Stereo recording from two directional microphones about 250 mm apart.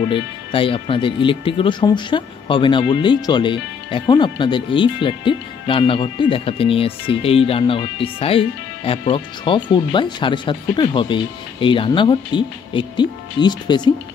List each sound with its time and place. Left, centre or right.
0.1 s speech: left